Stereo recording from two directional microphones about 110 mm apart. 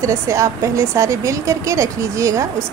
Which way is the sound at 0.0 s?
30° right (ahead or behind).